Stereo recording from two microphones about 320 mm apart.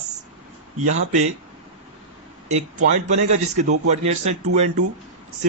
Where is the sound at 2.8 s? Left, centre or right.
Right.